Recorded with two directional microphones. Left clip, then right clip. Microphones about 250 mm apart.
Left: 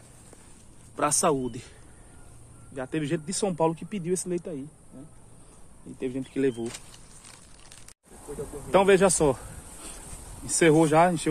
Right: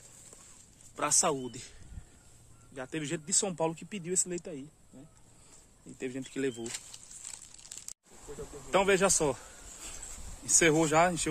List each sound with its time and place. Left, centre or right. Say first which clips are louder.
0.9 s speech: left 5 dB; centre
2.7 s speech: left 7 dB; centre
5.9 s speech: left 7 dB; centre
6.6 s a sound: left 5 dB; right
8.4 s speech: left 6 dB; centre